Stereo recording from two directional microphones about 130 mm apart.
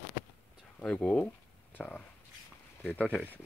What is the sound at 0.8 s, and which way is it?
Speech, 10° left (ahead or behind).